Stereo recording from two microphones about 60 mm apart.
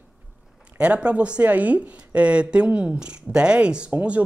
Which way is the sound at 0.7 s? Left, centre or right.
Right.